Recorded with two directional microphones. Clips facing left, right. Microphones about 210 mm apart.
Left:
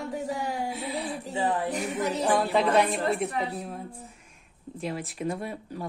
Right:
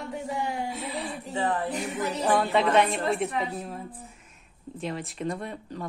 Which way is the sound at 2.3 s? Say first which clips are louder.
Right 1 dB; centre (ahead or behind).